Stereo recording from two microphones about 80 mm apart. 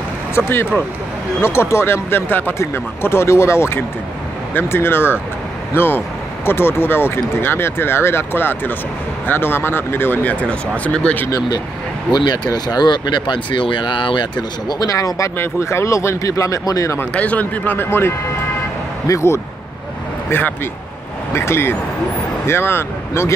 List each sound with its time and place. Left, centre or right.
0.4 s speech: centre
1.4 s speech: left
10.8 s speech: centre
12.1 s speech: left
14.7 s speech: left
15.3 s speech: left
17.0 s speech: centre; by 19.4 s left
20.2 s speech: left